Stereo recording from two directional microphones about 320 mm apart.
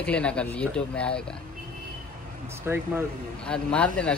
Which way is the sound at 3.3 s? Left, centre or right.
Centre.